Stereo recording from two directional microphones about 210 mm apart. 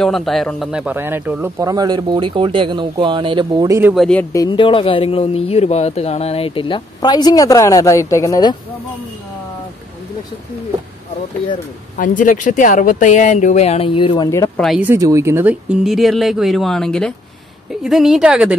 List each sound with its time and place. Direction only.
0.0 s speech: centre (ahead or behind); by 3.9 s 15° right (ahead or behind)
3.9 s speech: 5° left (ahead or behind)
12.0 s speech: 40° left (ahead or behind); by 14.5 s 20° left (ahead or behind)
14.6 s speech: 5° right (ahead or behind)